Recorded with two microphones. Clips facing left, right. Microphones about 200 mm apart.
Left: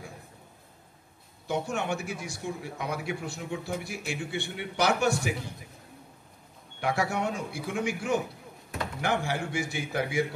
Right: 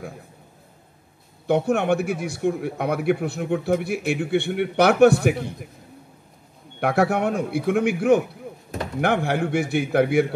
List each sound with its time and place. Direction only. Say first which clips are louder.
1.5 s speech: right 10 dB; 60° right (ahead or behind)
6.8 s speech: right 8 dB; 60° right (ahead or behind)